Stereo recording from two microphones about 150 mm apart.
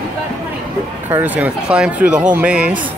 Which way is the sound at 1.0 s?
10° right (ahead or behind).